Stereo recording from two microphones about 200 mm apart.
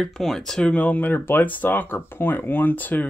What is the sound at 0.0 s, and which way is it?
Speech, centre (ahead or behind).